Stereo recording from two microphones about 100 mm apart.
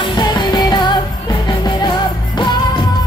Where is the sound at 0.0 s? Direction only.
45° left (ahead or behind).